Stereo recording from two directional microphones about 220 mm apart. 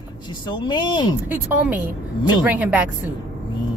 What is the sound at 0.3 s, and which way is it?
Speech, 20° left (ahead or behind).